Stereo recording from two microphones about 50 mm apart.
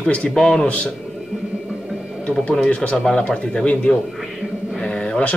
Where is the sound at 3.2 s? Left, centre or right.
Left.